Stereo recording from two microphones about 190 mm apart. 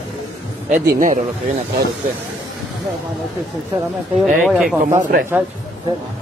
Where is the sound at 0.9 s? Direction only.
45° right (ahead or behind).